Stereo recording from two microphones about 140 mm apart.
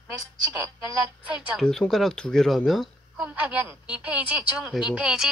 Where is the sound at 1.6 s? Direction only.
5° left (ahead or behind).